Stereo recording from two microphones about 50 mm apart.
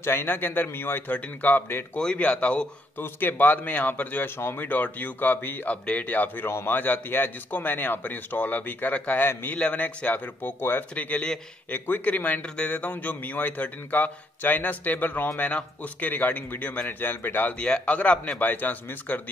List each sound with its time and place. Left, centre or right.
0.0 s a man's voice: left
2.1 s a man's voice: left
3.0 s a man's voice: left
4.2 s speech: left
4.6 s a man's voice: left
5.7 s a man's voice: left
9.2 s speech: left
9.6 s a man's voice: left
10.6 s speech: left
11.0 s a man's voice: left
17.6 s a man's voice: left
18.4 s a man's voice: left